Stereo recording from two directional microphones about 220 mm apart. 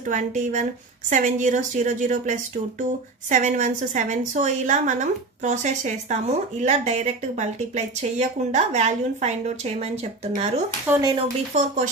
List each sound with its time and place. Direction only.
0.1 s a woman's voice: 35° right (ahead or behind)
10.9 s speech: 20° right (ahead or behind)